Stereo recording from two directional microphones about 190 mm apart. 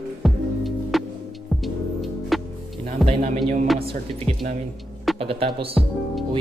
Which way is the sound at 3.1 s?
40° right (ahead or behind).